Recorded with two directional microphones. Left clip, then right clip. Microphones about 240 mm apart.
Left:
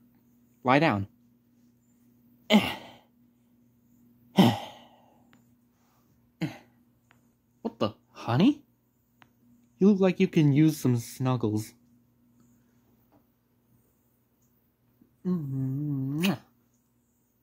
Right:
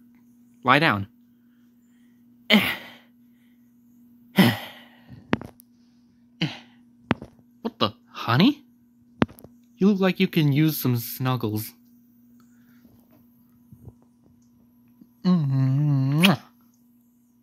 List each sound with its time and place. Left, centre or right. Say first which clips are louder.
0.6 s speech: right 4 dB; centre
2.4 s throat clearing: right 5 dB; centre
4.3 s sigh: right 3 dB; centre
6.3 s a sound: right 7 dB; centre
9.8 s speech: right 1 dB; centre
15.2 s humming: right 8 dB; right
16.2 s a sound: right 11 dB; right